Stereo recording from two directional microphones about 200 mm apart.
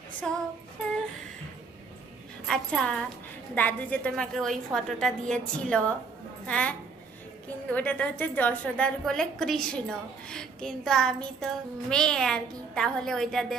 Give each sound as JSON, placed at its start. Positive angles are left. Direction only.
{"t": 0.3, "sound": "a woman's voice", "side_deg": 5}
{"t": 2.4, "sound": "a woman's voice", "side_deg": 5}